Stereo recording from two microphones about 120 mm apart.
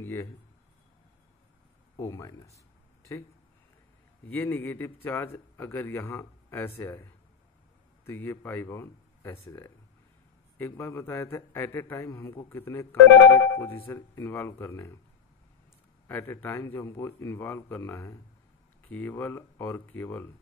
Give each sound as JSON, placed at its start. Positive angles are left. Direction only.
{"t": 0.0, "sound": "speech", "side_deg": 20}
{"t": 2.0, "sound": "a man's voice", "side_deg": 25}
{"t": 4.3, "sound": "a man's voice", "side_deg": 15}
{"t": 10.6, "sound": "a man's voice", "side_deg": 20}
{"t": 16.1, "sound": "a man's voice", "side_deg": 15}